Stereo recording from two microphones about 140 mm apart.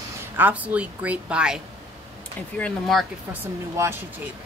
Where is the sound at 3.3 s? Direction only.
15° right (ahead or behind).